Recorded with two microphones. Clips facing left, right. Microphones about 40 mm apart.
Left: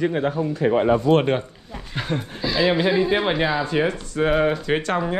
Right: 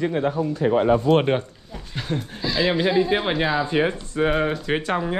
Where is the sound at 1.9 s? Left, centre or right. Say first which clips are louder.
Left 2 dB; centre.